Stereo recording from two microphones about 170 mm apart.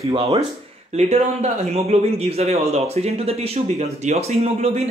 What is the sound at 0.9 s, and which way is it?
A man's voice, 40° right (ahead or behind).